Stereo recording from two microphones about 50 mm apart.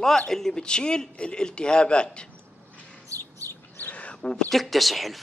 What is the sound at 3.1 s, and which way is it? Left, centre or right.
Bird, right.